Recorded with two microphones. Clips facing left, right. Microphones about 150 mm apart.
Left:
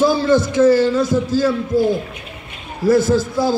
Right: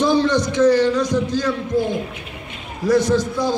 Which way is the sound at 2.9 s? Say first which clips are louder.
Left 2 dB; 5° left (ahead or behind).